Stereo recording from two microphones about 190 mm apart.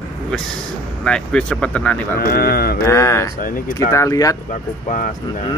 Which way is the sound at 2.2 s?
55° left (ahead or behind).